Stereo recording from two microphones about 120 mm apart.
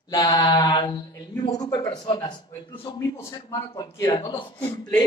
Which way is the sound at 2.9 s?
25° left (ahead or behind).